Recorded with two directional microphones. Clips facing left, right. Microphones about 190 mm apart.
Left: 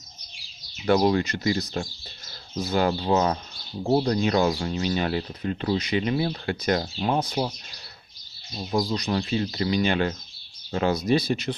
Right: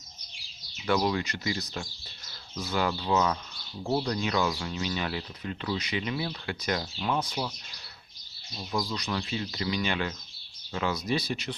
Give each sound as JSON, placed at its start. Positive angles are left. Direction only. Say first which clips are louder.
{"t": 0.8, "sound": "speech", "louder": "left 6 dB", "side_deg": 40}
{"t": 8.5, "sound": "speech", "louder": "left 6 dB", "side_deg": 35}